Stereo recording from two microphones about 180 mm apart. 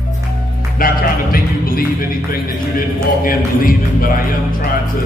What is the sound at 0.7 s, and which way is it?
Music, 50° left (ahead or behind).